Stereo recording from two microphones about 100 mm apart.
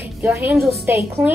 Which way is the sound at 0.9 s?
20° right (ahead or behind).